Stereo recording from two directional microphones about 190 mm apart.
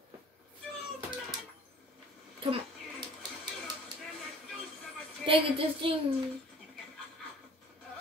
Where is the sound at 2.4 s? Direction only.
25° right (ahead or behind).